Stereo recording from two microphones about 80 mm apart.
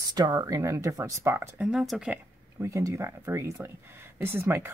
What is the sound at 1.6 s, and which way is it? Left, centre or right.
Speech, centre.